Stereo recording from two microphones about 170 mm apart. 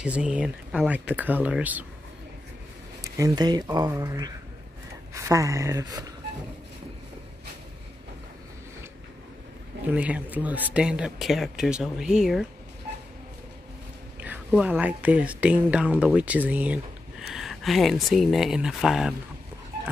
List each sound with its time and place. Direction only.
0.0 s speech: 5° right (ahead or behind)
3.0 s speech: 20° right (ahead or behind)
9.9 s speech: 10° right (ahead or behind)
14.2 s speech: 10° right (ahead or behind)